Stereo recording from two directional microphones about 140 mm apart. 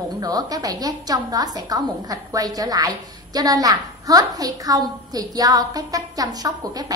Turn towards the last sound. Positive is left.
turn(degrees=-25)  # may be behind; listen again after turning